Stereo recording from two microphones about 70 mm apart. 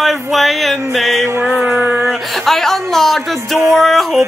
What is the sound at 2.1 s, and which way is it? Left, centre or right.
Music, centre.